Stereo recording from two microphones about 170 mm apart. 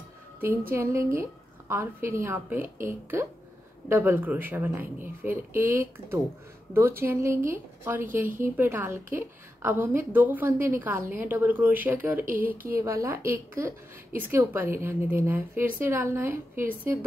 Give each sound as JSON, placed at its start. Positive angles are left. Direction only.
{"t": 0.7, "sound": "a woman's voice", "side_deg": -15}